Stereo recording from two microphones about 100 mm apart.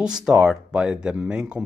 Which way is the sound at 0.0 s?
5° right (ahead or behind).